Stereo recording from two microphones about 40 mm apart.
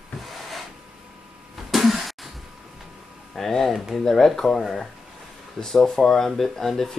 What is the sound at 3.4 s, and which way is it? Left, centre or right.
Speech, centre.